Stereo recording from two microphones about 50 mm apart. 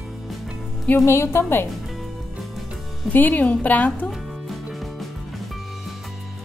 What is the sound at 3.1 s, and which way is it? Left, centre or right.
Speech, left.